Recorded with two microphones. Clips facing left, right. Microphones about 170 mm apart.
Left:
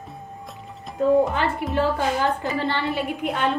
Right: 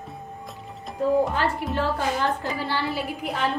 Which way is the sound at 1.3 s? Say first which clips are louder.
Left 1 dB; centre (ahead or behind).